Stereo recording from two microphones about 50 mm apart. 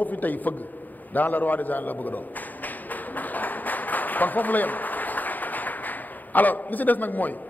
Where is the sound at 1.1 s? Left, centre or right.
Left.